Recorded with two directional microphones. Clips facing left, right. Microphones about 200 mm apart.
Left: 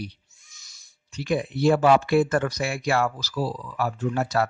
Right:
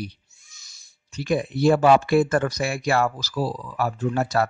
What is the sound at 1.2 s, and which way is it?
Speech, 45° right (ahead or behind).